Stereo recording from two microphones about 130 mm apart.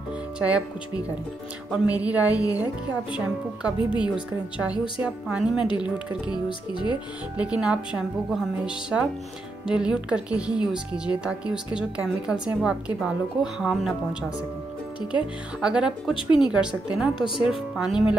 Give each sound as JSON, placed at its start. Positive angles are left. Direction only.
{"t": 0.4, "sound": "a woman's voice", "side_deg": -10}
{"t": 1.7, "sound": "a woman's voice", "side_deg": -10}
{"t": 6.3, "sound": "speech", "side_deg": 35}
{"t": 7.3, "sound": "a woman's voice", "side_deg": -10}
{"t": 15.6, "sound": "a woman's voice", "side_deg": -5}